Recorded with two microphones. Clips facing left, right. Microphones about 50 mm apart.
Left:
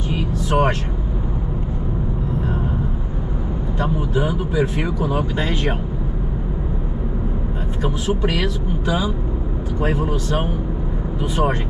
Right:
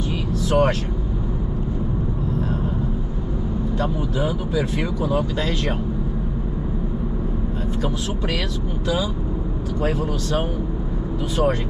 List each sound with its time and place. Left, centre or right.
0.1 s vehicle: left
3.8 s speech: left
7.8 s speech: centre